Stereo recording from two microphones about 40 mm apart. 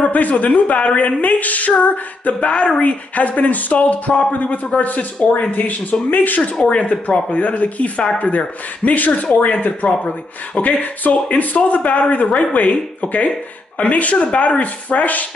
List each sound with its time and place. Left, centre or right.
0.0 s speech: left
6.5 s speech: left
10.8 s speech: left